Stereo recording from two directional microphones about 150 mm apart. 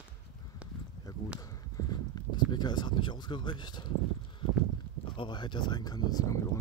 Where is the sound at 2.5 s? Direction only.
30° left (ahead or behind).